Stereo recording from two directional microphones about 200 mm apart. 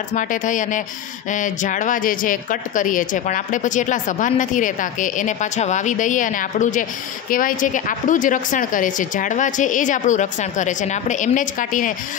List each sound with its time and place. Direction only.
0.1 s a woman's voice: 40° left (ahead or behind)